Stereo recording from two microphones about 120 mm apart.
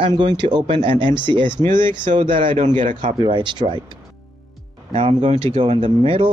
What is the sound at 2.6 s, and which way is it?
Speech, 90° right.